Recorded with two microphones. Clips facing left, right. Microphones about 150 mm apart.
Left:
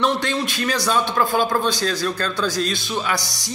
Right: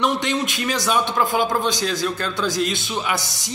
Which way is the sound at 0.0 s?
20° right (ahead or behind).